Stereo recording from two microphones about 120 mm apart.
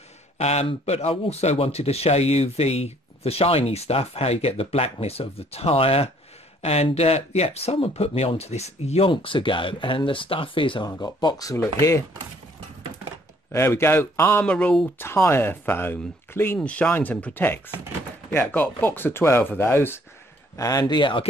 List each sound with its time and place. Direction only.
0.4 s speech: 65° left (ahead or behind)
9.1 s speech: 45° left (ahead or behind); by 12.0 s 25° left (ahead or behind)
13.5 s speech: 20° left (ahead or behind)
14.4 s speech: 10° left (ahead or behind)
15.0 s speech: 20° left (ahead or behind)
20.5 s speech: 30° left (ahead or behind)